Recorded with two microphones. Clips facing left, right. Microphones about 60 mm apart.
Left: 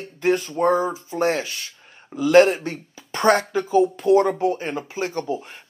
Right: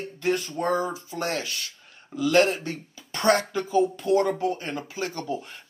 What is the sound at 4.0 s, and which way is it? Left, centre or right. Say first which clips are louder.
Speech: left 5 dB; left.